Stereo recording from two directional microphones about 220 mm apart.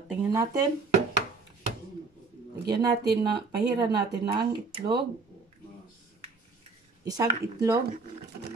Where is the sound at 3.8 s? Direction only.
20° right (ahead or behind).